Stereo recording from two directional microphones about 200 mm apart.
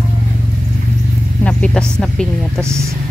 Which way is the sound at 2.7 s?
15° right (ahead or behind).